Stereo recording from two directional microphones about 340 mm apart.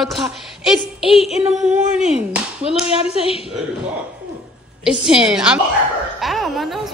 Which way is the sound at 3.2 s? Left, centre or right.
Centre.